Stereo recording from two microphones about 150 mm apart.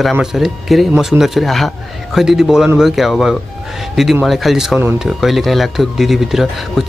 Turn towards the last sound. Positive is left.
turn(degrees=0)  # may be behind; listen again after turning